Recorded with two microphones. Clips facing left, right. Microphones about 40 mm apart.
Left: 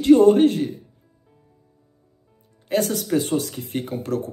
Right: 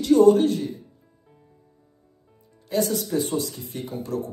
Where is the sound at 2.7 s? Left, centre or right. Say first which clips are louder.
Left 2 dB; left.